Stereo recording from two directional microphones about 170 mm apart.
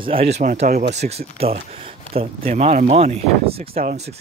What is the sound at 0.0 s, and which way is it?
Speech, 35° right (ahead or behind).